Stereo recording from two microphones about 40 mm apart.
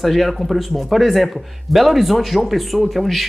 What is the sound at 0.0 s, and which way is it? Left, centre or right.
Speech, centre.